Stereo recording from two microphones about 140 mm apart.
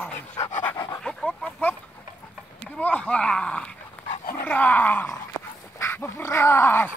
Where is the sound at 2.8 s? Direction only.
10° left (ahead or behind).